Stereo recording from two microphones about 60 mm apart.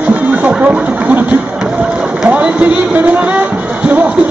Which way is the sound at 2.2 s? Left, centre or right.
Right.